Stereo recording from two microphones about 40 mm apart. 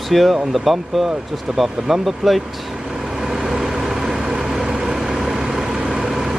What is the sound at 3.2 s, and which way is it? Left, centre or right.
Vehicle, centre.